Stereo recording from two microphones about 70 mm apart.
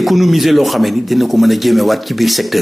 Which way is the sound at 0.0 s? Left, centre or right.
Centre.